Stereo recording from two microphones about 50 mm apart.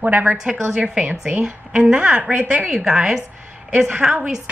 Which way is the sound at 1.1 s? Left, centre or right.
Right.